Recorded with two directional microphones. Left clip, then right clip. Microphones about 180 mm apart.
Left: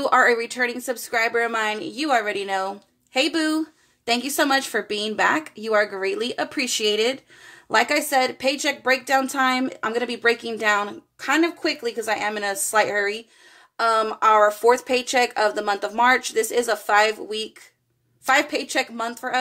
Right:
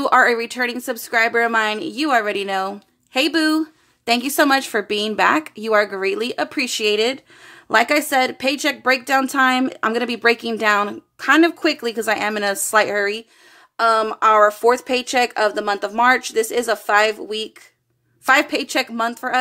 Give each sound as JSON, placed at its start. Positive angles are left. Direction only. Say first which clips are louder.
{"t": 0.0, "sound": "a woman's voice", "louder": "right 3 dB", "side_deg": -25}
{"t": 7.7, "sound": "speech", "louder": "right 3 dB", "side_deg": -30}